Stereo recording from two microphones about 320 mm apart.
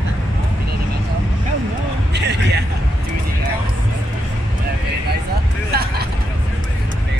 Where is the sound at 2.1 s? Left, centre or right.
Right.